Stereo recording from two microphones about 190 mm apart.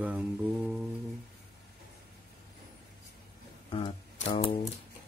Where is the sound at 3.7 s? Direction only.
25° left (ahead or behind).